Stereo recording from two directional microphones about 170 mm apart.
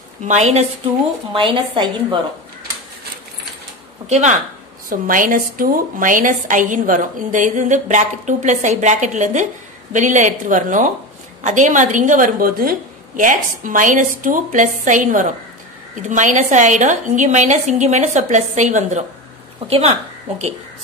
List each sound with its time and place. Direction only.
0.3 s a woman's voice: 40° right (ahead or behind)
1.3 s a woman's voice: 30° right (ahead or behind)
4.1 s a woman's voice: 45° right (ahead or behind)